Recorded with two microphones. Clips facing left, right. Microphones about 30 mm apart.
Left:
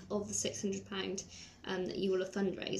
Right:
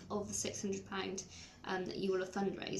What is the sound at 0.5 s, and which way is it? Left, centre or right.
Speech, centre.